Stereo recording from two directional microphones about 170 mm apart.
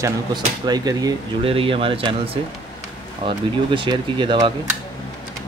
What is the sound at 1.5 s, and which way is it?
Speech, 30° right (ahead or behind).